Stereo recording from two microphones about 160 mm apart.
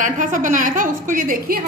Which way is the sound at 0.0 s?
55° right (ahead or behind).